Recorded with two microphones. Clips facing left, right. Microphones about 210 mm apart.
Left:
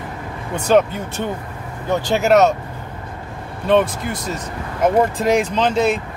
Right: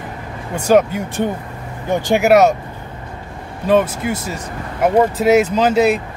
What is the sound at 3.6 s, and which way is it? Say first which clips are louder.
Speech: right 1 dB; 5° right (ahead or behind).